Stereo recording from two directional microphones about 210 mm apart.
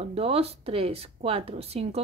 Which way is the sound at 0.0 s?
30° right (ahead or behind).